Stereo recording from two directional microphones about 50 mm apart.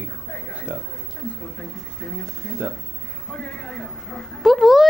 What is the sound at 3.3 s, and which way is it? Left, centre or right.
Speech, left.